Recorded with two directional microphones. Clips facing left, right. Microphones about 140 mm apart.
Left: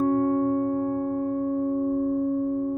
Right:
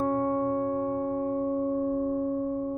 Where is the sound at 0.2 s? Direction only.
25° right (ahead or behind).